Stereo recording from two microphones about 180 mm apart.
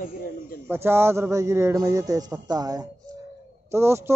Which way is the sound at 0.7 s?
15° right (ahead or behind).